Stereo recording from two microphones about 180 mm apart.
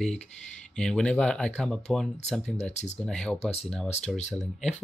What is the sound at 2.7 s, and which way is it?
Speech, 40° left (ahead or behind).